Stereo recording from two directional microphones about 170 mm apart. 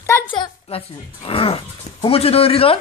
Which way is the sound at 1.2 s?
35° left (ahead or behind).